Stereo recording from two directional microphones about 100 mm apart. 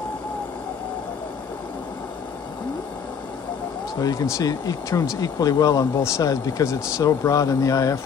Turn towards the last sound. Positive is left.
turn(degrees=35)  # may be behind; listen again after turning